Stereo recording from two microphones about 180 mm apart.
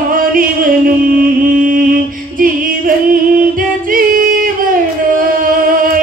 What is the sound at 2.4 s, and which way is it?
Music, 50° right (ahead or behind).